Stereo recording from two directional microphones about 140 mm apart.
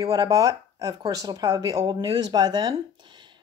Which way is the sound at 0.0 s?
25° right (ahead or behind).